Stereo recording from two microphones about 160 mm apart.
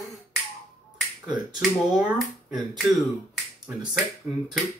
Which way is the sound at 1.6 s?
5° right (ahead or behind).